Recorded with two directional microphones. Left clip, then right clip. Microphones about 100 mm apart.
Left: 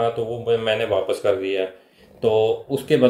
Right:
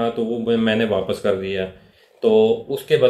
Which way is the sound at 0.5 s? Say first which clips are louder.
Even; 50° left (ahead or behind).